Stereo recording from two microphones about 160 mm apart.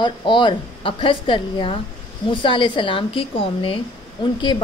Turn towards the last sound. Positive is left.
turn(degrees=30)  # may be behind; listen again after turning